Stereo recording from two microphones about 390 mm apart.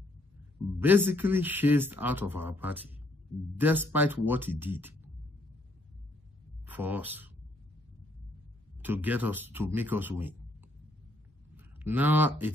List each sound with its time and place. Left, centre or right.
0.7 s speech: centre
6.8 s speech: centre
8.8 s speech: centre
11.5 s speech: centre